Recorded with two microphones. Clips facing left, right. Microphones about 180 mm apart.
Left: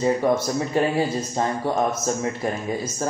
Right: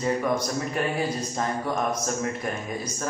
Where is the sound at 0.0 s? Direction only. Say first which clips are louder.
Left 5 dB; 25° left (ahead or behind).